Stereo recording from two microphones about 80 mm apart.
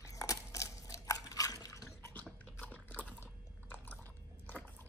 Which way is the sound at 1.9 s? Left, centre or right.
Centre.